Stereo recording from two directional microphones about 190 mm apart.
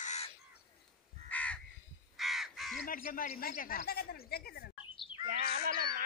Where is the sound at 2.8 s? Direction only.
45° left (ahead or behind).